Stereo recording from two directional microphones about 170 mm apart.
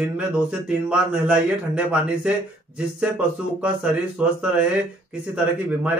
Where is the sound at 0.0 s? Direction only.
5° right (ahead or behind).